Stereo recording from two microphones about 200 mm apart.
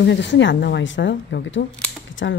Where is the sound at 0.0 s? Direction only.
60° left (ahead or behind).